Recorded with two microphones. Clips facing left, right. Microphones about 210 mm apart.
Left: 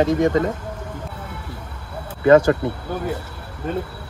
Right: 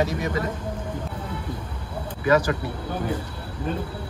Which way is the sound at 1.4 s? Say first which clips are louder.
Right 3 dB; 10° left (ahead or behind).